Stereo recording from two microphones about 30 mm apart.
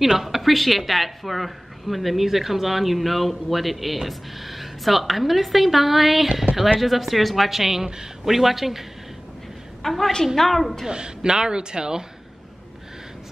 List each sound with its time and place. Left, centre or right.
0.2 s a woman's voice: centre
9.8 s a woman's voice: centre
10.9 s speech: right